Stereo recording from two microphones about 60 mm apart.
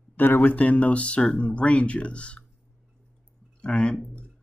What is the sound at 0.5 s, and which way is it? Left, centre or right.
Speech, left.